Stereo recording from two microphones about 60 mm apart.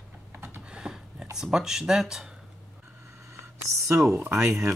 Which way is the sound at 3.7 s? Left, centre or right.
Right.